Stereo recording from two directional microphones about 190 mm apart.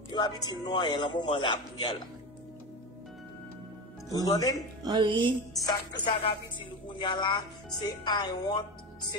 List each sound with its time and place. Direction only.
0.1 s a man's voice: 20° left (ahead or behind)
4.1 s a man's voice: 20° left (ahead or behind)
4.8 s music: 25° right (ahead or behind)
5.6 s a man's voice: 20° left (ahead or behind)